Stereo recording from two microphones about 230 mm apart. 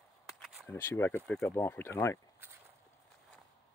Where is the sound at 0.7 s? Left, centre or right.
Centre.